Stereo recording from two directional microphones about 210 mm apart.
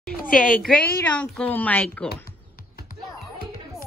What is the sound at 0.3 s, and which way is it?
A woman's voice, 5° left (ahead or behind).